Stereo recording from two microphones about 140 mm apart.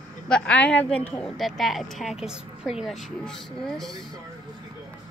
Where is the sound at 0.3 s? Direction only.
5° left (ahead or behind).